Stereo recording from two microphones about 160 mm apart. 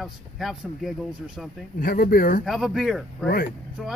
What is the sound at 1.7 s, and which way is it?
Speech, 60° left (ahead or behind).